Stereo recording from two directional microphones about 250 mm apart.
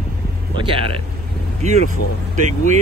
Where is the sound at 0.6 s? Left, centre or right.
Right.